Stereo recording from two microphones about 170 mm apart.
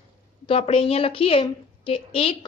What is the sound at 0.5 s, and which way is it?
A woman's voice, 35° left (ahead or behind).